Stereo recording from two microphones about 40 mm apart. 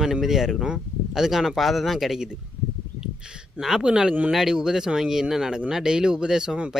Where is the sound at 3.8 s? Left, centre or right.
Right.